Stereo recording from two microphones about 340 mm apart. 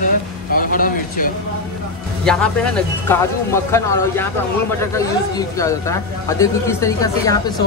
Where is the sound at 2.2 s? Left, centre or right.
Centre.